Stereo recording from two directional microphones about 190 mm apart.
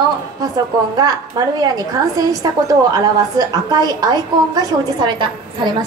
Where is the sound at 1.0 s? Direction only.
20° right (ahead or behind).